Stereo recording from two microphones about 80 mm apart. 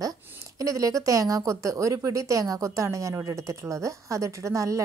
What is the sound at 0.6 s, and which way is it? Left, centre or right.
A woman's voice, right.